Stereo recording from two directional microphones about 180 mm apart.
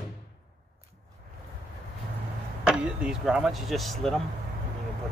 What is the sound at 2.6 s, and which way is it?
Speech, 5° right (ahead or behind).